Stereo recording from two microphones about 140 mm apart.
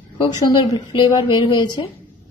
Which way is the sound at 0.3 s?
30° left (ahead or behind).